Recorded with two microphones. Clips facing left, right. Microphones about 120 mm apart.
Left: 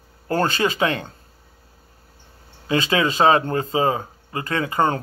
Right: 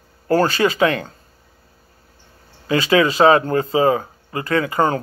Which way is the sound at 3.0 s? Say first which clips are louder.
Right 3 dB; 30° left (ahead or behind).